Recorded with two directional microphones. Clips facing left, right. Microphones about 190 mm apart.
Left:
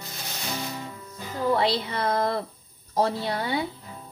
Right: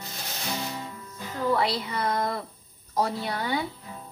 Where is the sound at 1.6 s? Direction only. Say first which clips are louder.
Left 2 dB; 25° left (ahead or behind).